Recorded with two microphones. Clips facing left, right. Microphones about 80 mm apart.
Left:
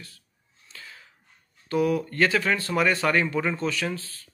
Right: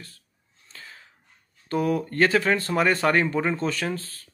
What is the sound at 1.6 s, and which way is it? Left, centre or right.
Speech, right.